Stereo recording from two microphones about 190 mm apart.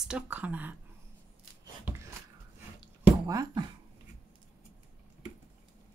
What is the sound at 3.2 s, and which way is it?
Speech, 20° right (ahead or behind).